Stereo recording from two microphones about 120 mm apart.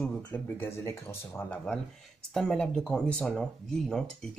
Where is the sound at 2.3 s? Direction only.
5° left (ahead or behind).